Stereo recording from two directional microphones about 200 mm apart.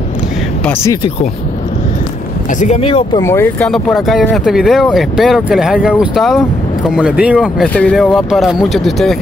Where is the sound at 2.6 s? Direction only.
30° left (ahead or behind).